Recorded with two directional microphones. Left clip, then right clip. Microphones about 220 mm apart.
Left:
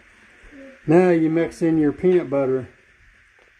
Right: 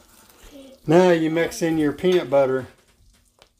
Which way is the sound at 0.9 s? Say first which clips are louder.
Even; 10° left (ahead or behind).